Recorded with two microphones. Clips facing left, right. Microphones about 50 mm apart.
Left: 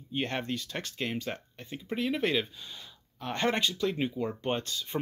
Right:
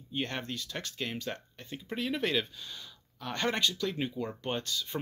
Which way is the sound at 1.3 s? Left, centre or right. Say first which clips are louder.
Left 1 dB; centre.